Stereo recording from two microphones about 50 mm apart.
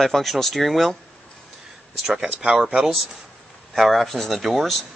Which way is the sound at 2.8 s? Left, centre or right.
Centre.